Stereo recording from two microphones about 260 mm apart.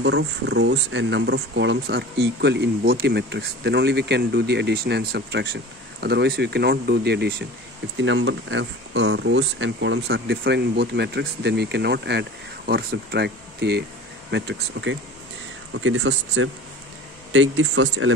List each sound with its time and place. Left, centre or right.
0.0 s speech: right